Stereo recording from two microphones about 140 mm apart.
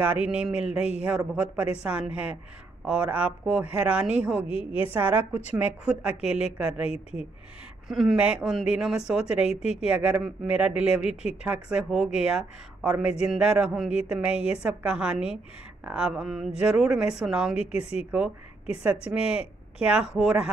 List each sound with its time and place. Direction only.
0.0 s speech: 10° right (ahead or behind)
4.5 s a woman's voice: 40° left (ahead or behind)
4.9 s a woman's voice: 15° right (ahead or behind)
17.6 s speech: 50° left (ahead or behind)
18.8 s speech: 10° right (ahead or behind)